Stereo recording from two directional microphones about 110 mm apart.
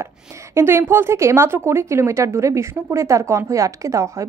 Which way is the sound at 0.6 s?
20° right (ahead or behind).